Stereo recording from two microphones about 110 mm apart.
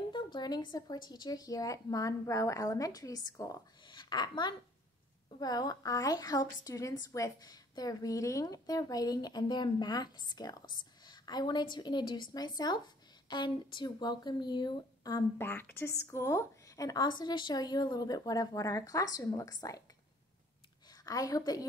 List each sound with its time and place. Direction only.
0.1 s a woman's voice: 40° left (ahead or behind)
15.3 s a woman's voice: 20° left (ahead or behind); by 19.8 s 35° left (ahead or behind)
20.9 s a woman's voice: 35° left (ahead or behind)